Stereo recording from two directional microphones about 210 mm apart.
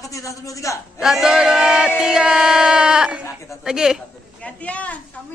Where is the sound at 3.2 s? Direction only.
15° left (ahead or behind).